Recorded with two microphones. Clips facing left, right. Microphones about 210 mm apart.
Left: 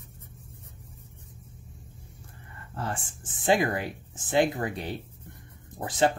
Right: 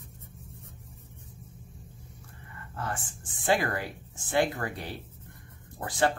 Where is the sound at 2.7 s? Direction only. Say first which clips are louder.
Left 2 dB; 30° left (ahead or behind).